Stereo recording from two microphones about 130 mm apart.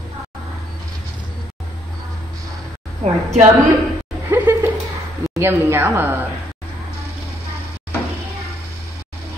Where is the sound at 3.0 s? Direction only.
60° right (ahead or behind).